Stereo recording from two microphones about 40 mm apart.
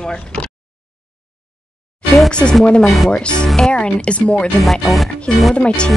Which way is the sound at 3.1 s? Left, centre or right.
Left.